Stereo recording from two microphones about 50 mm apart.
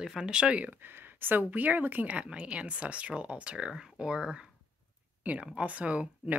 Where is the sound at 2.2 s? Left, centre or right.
Right.